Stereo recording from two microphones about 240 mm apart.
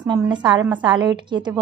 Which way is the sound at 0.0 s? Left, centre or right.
Centre.